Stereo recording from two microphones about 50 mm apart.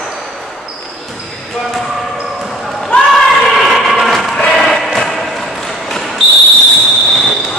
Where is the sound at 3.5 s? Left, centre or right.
Centre.